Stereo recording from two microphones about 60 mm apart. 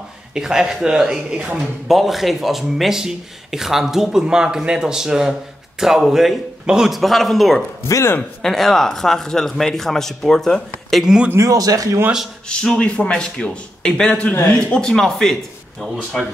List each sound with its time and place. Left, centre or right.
0.3 s speech: centre
6.9 s speech: centre
11.3 s speech: right
12.4 s speech: centre